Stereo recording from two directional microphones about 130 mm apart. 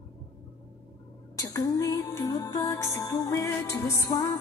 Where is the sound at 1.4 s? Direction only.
30° left (ahead or behind).